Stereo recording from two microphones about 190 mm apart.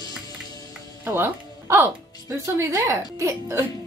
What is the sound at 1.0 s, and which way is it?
Speech, 10° right (ahead or behind).